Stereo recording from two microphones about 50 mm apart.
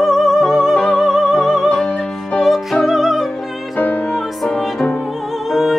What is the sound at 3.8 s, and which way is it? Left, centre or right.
Music, left.